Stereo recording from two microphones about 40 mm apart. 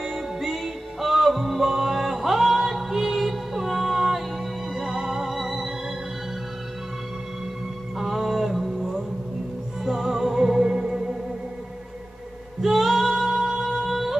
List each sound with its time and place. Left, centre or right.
0.0 s music: centre
8.0 s music: centre
12.6 s female singing: centre